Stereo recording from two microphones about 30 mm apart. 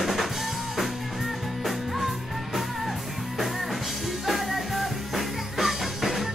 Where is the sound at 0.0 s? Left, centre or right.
Centre.